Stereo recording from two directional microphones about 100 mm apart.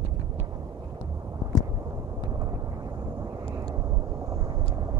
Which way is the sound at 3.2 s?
35° right (ahead or behind).